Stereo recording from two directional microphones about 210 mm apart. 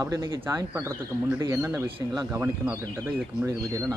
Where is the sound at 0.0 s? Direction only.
15° right (ahead or behind).